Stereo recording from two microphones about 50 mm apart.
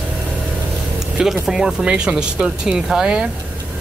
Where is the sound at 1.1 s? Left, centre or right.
Centre.